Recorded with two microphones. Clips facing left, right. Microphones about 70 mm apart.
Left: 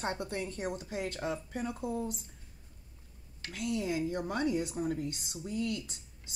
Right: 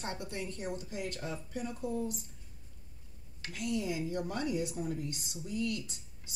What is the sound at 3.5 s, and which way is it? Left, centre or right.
Speech, left.